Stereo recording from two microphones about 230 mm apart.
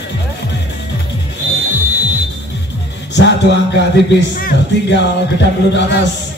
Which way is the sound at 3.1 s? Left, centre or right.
Left.